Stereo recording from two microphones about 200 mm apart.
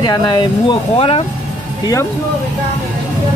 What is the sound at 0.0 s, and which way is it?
Speech, 20° left (ahead or behind).